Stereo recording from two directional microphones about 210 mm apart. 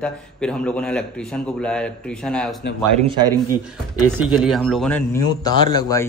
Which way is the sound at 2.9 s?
25° right (ahead or behind).